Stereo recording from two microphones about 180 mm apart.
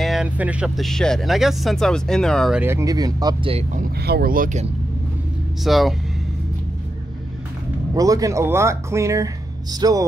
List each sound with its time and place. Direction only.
0.0 s speech: 5° right (ahead or behind)
2.6 s speech: 15° right (ahead or behind)
4.0 s speech: 60° right (ahead or behind)
5.6 s speech: centre (ahead or behind)
7.9 s speech: 20° right (ahead or behind)